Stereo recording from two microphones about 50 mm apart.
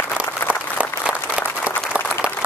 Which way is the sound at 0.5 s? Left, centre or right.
Right.